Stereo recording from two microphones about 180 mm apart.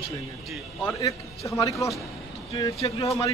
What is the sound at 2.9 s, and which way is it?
Speech, 15° left (ahead or behind).